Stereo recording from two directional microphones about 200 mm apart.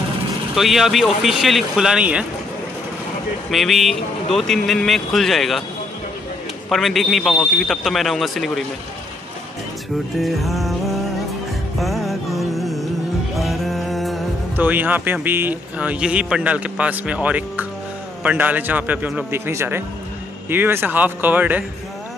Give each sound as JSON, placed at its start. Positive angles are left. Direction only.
{"t": 0.6, "sound": "speech", "side_deg": 0}
{"t": 3.4, "sound": "speech", "side_deg": 0}
{"t": 6.7, "sound": "speech", "side_deg": 0}
{"t": 10.2, "sound": "music", "side_deg": 0}
{"t": 13.4, "sound": "a man's voice", "side_deg": 0}